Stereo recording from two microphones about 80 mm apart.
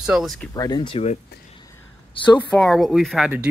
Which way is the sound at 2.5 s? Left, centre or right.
Centre.